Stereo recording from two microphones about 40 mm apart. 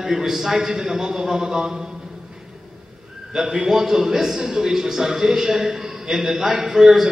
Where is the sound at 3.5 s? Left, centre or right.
Centre.